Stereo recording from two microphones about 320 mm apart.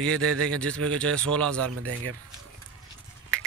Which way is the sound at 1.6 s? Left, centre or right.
Right.